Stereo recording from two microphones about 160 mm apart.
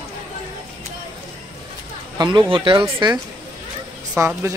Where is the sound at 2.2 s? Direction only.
30° right (ahead or behind).